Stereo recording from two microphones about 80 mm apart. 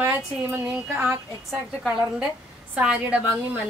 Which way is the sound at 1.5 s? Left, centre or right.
Centre.